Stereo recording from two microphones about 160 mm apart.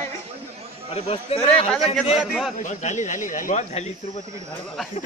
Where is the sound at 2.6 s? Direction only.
50° left (ahead or behind).